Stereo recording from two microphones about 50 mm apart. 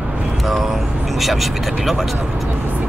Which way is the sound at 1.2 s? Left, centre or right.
Centre.